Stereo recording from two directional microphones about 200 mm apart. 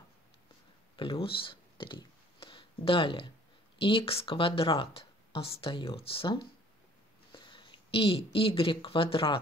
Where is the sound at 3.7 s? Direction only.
25° left (ahead or behind).